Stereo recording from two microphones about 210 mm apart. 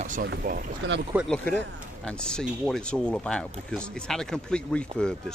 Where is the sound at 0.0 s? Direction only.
40° right (ahead or behind).